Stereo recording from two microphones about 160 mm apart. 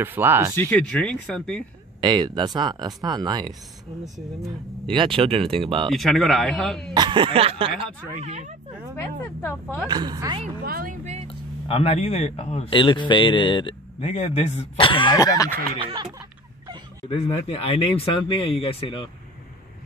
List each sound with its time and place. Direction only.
0.0 s speech: 15° right (ahead or behind)
0.6 s a man's voice: 10° left (ahead or behind)
2.0 s speech: 25° right (ahead or behind)
4.9 s speech: 35° right (ahead or behind)
5.9 s a man's voice: centre (ahead or behind)
6.9 s speech: 30° right (ahead or behind); by 8.5 s 45° right (ahead or behind)
9.8 s speech: 25° right (ahead or behind)
10.6 s speech: 65° right (ahead or behind)
11.2 s speech: 35° left (ahead or behind); by 15.6 s 20° left (ahead or behind)
15.8 s speech: 25° right (ahead or behind)
17.1 s speech: 35° left (ahead or behind)